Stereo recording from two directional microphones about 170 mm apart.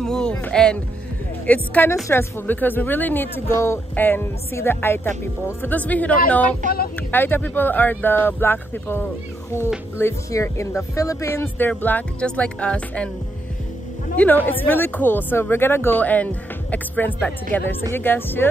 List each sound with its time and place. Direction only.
0.0 s speech: 5° left (ahead or behind)
6.6 s speech: 50° right (ahead or behind)
7.1 s speech: 10° left (ahead or behind)
14.1 s speech: 10° left (ahead or behind)